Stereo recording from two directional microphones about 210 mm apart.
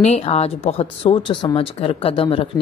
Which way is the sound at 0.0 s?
30° left (ahead or behind).